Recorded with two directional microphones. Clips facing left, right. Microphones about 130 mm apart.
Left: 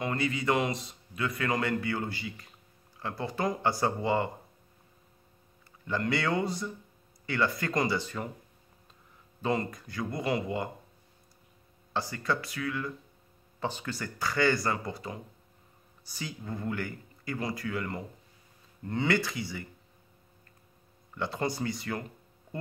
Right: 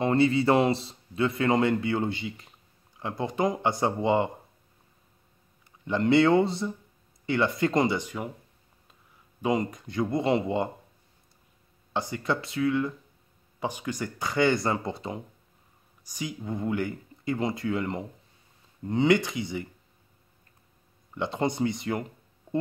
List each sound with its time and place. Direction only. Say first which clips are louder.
0.0 s a man's voice: right 8 dB; 30° right (ahead or behind)
5.9 s a man's voice: right 9 dB; 20° right (ahead or behind)
9.4 s a man's voice: right 4 dB; 15° right (ahead or behind)
11.9 s a man's voice: right 3 dB; 20° right (ahead or behind)
13.6 s a man's voice: right 3 dB; 15° right (ahead or behind)
21.1 s a man's voice: right 4 dB; 20° right (ahead or behind)